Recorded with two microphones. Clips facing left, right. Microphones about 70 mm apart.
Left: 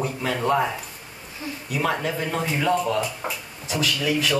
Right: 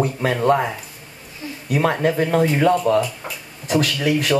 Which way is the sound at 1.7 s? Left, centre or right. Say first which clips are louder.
Right 6 dB; right.